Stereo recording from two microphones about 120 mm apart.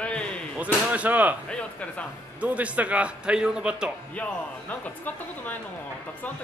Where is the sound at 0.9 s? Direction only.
15° right (ahead or behind).